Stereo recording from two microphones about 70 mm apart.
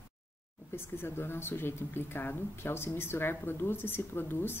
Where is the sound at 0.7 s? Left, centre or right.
Left.